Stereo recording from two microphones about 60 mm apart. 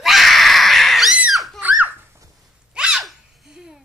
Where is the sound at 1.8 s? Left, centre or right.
Right.